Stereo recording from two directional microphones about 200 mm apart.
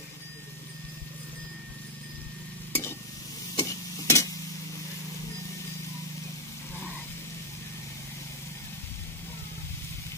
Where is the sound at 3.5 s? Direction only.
15° left (ahead or behind).